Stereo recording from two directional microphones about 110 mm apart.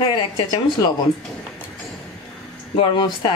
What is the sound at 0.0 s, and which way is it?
Speech, 45° left (ahead or behind).